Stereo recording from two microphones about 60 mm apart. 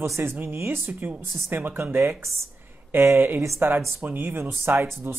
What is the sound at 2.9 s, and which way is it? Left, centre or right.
Speech, right.